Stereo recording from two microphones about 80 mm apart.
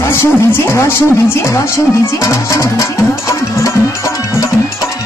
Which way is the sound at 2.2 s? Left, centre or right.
Left.